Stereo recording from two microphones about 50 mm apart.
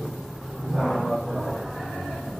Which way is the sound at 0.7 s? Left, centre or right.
Centre.